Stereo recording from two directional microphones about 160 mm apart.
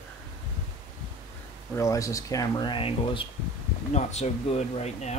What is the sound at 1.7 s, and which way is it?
Speech, 20° left (ahead or behind).